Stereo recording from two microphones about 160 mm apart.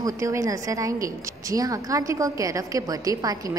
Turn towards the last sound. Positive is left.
turn(degrees=-25)  # may be behind; listen again after turning